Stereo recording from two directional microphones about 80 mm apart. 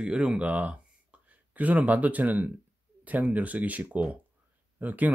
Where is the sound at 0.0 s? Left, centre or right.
Centre.